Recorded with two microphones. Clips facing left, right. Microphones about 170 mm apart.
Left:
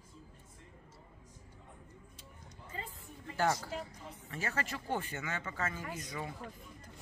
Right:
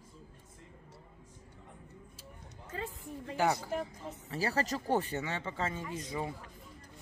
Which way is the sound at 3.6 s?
50° right (ahead or behind).